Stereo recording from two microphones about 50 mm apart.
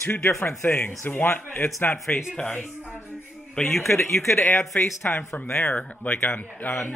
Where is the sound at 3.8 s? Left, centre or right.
Left.